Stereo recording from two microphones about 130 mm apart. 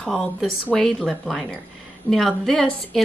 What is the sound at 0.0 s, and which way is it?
A woman's voice, 5° left (ahead or behind).